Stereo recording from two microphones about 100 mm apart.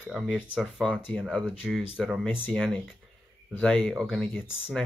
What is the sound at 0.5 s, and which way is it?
Speech, 5° right (ahead or behind).